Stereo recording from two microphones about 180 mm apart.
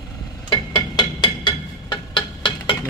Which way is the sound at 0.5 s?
25° left (ahead or behind).